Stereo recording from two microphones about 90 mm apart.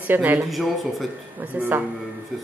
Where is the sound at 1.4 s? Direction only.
20° right (ahead or behind).